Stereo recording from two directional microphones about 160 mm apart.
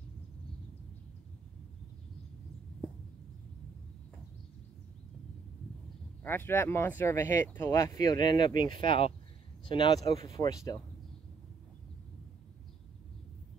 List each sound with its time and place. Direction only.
6.2 s speech: 15° left (ahead or behind)